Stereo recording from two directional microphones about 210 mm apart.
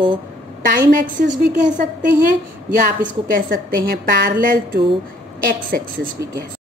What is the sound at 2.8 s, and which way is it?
A woman's voice, 45° right (ahead or behind).